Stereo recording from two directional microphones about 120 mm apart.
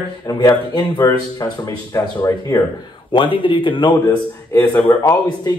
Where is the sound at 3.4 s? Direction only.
45° left (ahead or behind).